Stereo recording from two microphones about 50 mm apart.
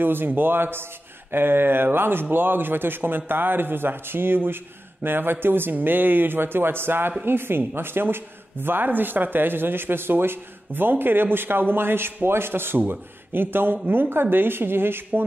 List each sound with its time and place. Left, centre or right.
0.0 s speech: right